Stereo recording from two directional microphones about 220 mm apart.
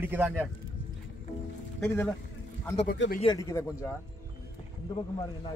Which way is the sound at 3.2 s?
20° left (ahead or behind).